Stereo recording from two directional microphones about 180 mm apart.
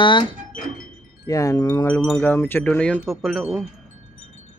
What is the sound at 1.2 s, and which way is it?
Speech, 20° left (ahead or behind).